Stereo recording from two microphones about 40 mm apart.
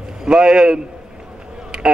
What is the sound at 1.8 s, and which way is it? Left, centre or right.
Speech, right.